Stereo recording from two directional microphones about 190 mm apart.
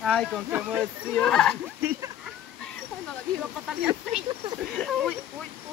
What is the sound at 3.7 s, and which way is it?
Speech, 5° right (ahead or behind).